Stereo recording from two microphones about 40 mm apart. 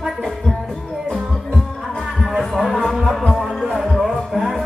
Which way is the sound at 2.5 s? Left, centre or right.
Centre.